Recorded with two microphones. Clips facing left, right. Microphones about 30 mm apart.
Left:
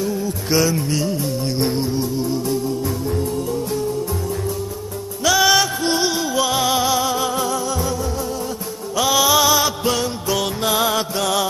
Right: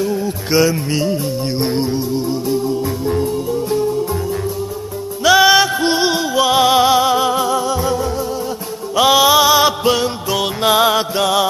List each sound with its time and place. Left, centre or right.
0.0 s music: right
5.2 s music: centre